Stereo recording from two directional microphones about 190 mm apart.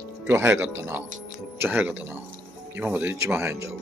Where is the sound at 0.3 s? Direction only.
10° right (ahead or behind).